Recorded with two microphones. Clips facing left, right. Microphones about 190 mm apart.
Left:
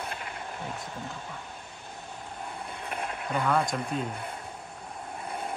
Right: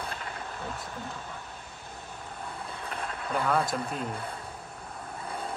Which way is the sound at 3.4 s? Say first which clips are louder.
Left 1 dB; 5° right (ahead or behind).